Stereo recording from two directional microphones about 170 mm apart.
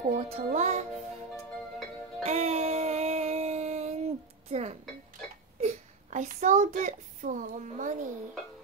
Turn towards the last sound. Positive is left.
turn(degrees=-50)  # may be behind; listen again after turning